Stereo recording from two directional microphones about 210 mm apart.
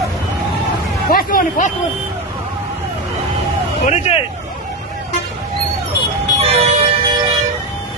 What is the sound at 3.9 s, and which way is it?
Vehicle, 30° left (ahead or behind).